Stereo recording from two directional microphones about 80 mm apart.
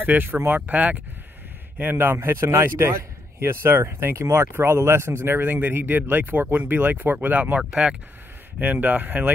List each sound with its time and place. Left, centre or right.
0.0 s a man's voice: right